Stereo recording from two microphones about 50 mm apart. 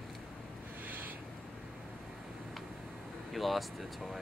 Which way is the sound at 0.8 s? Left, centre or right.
Right.